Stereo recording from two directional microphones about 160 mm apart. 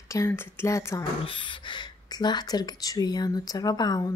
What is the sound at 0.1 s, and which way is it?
Speech, 20° left (ahead or behind).